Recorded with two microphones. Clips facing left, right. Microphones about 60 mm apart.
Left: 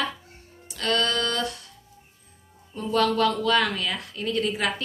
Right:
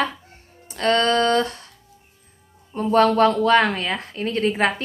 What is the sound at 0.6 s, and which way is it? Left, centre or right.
Music, right.